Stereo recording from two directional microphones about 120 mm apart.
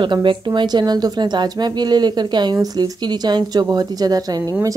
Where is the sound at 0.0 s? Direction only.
45° right (ahead or behind).